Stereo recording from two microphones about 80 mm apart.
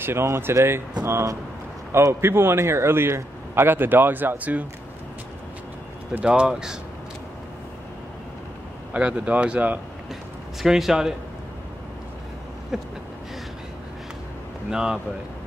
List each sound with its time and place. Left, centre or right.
0.0 s a man's voice: right
6.2 s speech: centre
8.9 s speech: centre
10.6 s a man's voice: centre
12.7 s a man's voice: centre
14.7 s speech: centre